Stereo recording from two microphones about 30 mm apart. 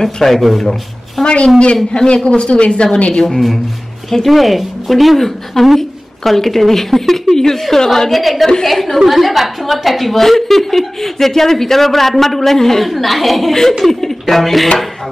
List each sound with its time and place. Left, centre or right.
0.0 s a woman's voice: centre
1.2 s speech: left
1.9 s a man's voice: left
2.2 s speech: left
3.1 s a man's voice: left
3.3 s a woman's voice: centre
8.1 s a woman's voice: centre
9.0 s a woman's voice: centre